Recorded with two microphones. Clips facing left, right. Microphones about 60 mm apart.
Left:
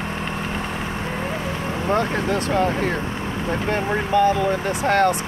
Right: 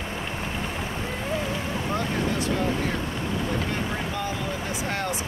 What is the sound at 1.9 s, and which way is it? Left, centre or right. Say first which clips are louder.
Speech: left 7 dB; left.